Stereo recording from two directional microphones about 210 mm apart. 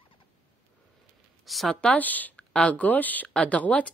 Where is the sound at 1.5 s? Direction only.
Centre (ahead or behind).